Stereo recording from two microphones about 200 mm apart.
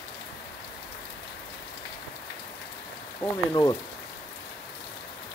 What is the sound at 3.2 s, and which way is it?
Speech, 20° left (ahead or behind).